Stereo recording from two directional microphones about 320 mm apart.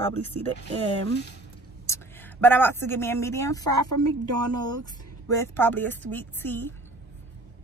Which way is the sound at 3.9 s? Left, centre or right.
Right.